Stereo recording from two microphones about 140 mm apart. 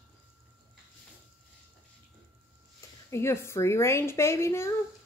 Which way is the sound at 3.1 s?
20° left (ahead or behind).